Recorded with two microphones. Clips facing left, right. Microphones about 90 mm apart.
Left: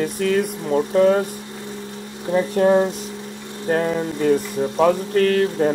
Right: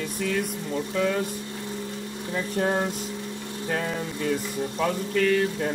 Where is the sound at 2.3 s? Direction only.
60° left (ahead or behind).